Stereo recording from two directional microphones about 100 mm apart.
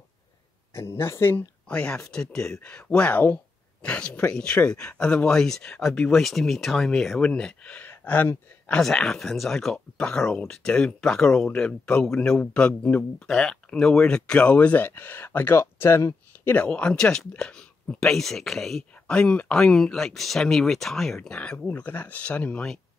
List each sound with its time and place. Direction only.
0.7 s speech: 25° left (ahead or behind)
1.7 s speech: 10° left (ahead or behind); by 16.2 s 25° left (ahead or behind)
16.4 s speech: 15° left (ahead or behind)